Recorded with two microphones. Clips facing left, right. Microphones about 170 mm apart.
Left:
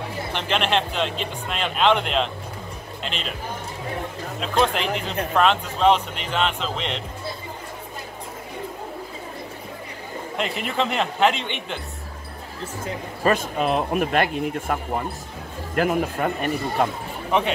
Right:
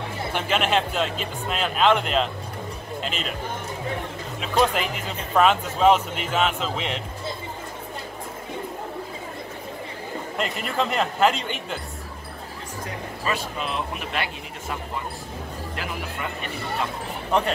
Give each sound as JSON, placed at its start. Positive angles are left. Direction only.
{"t": 0.3, "sound": "speech", "side_deg": -5}
{"t": 4.4, "sound": "speech", "side_deg": -5}
{"t": 10.3, "sound": "speech", "side_deg": 0}
{"t": 13.2, "sound": "speech", "side_deg": 50}